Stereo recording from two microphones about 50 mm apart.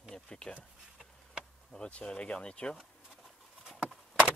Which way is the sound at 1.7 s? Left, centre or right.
Centre.